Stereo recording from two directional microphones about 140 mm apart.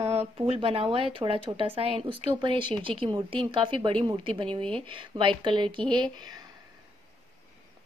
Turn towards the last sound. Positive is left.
turn(degrees=-30)  # may be behind; listen again after turning